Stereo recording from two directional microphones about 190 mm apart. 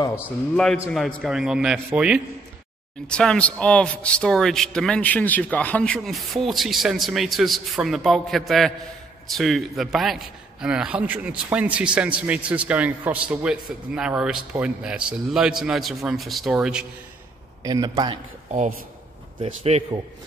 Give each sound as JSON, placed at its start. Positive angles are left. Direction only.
{"t": 0.1, "sound": "a man's voice", "side_deg": 5}
{"t": 3.1, "sound": "a man's voice", "side_deg": 5}
{"t": 17.6, "sound": "a man's voice", "side_deg": -20}
{"t": 18.5, "sound": "a man's voice", "side_deg": -40}